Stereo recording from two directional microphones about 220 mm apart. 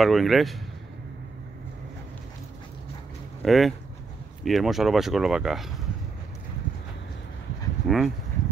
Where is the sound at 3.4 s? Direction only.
Centre (ahead or behind).